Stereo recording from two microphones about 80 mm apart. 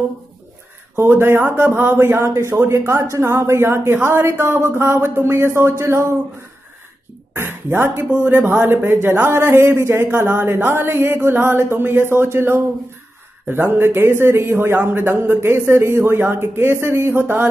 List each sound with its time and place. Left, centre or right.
0.9 s speech: right
7.3 s a man's voice: right